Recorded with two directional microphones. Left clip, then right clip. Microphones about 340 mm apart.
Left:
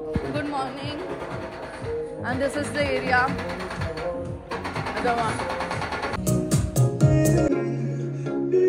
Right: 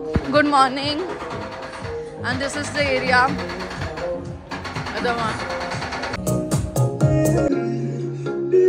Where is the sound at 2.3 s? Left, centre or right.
Centre.